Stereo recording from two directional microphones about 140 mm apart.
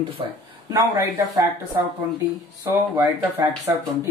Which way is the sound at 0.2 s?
35° right (ahead or behind).